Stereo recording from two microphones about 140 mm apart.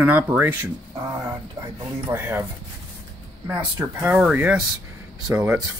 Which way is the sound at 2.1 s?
15° right (ahead or behind).